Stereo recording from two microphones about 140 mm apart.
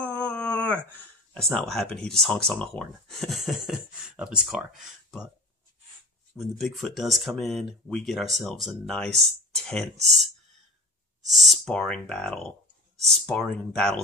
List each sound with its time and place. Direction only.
0.0 s a sound: 10° left (ahead or behind)
0.9 s speech: 5° left (ahead or behind)
6.3 s speech: centre (ahead or behind)